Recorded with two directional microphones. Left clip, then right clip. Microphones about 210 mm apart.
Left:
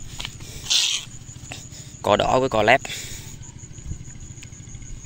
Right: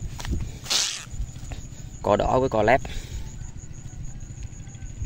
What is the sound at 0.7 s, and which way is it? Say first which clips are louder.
Cat: left 4 dB; 20° right (ahead or behind).